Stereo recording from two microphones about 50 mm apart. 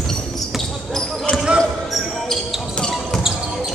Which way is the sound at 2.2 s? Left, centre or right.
Centre.